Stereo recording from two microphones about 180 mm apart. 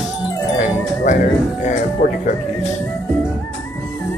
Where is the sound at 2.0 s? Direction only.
45° left (ahead or behind).